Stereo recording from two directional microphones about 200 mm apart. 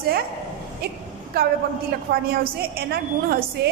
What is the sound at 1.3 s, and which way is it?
Speech, 50° right (ahead or behind).